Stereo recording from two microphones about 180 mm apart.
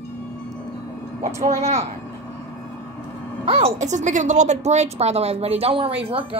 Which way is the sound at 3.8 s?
40° right (ahead or behind).